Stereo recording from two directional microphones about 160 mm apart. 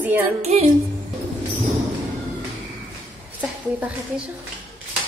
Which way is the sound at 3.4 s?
10° right (ahead or behind).